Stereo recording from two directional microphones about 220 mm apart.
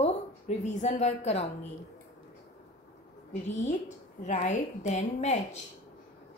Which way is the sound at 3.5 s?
30° left (ahead or behind).